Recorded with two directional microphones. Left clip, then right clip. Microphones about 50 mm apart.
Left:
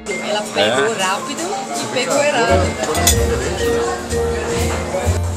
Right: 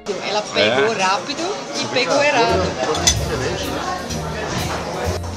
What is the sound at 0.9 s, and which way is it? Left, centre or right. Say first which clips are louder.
Speech: even; right.